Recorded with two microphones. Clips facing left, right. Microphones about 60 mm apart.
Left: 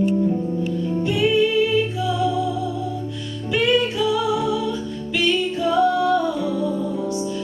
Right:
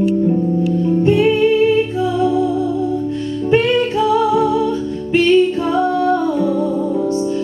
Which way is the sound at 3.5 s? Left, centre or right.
Right.